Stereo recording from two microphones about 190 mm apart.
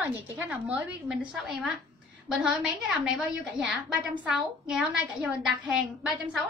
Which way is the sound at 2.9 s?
5° right (ahead or behind).